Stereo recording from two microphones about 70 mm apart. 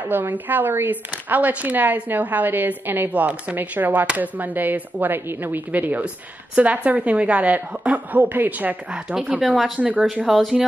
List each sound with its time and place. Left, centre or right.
0.1 s a woman's voice: right
9.4 s speech: centre
9.8 s speech: centre
10.2 s speech: centre